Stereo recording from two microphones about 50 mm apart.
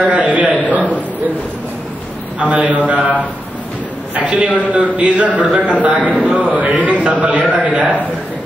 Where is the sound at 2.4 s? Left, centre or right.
Right.